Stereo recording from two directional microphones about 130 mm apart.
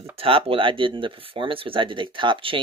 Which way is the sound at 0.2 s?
45° right (ahead or behind).